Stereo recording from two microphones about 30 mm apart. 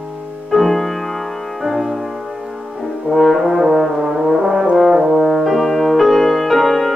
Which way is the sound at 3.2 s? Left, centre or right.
Centre.